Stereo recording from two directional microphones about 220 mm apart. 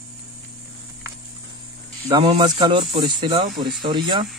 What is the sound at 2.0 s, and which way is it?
Speech, 20° right (ahead or behind).